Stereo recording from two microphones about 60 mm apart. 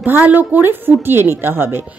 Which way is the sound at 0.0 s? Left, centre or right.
Right.